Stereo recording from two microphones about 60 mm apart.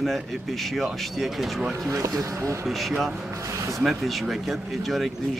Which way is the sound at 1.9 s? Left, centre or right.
Right.